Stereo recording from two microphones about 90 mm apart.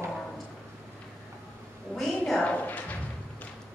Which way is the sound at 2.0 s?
Centre (ahead or behind).